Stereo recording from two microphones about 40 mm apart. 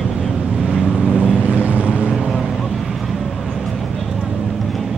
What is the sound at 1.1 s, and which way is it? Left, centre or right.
Vehicle, right.